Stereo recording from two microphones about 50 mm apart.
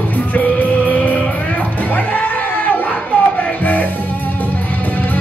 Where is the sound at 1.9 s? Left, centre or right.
Left.